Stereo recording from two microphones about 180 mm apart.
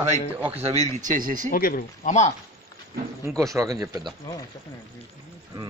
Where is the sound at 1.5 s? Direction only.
55° left (ahead or behind).